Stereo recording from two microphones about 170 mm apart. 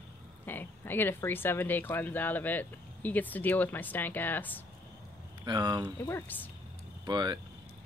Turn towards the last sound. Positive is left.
turn(degrees=-25)  # may be behind; listen again after turning